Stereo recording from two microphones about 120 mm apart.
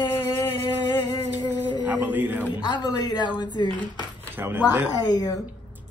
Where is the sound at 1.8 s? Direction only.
15° right (ahead or behind).